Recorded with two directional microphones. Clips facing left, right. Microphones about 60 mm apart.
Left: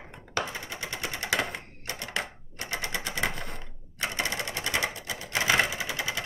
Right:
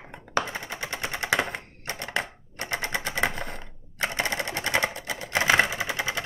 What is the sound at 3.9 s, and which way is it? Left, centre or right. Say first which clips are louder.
Sewing machine: right 3 dB; right.